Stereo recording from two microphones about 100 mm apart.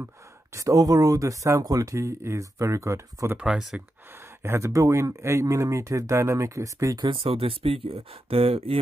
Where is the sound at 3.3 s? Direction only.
5° right (ahead or behind).